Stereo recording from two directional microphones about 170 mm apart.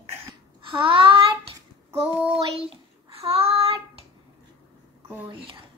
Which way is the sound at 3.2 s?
35° right (ahead or behind).